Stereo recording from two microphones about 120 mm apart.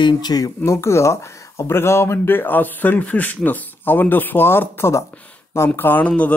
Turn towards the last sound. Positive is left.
turn(degrees=10)  # may be behind; listen again after turning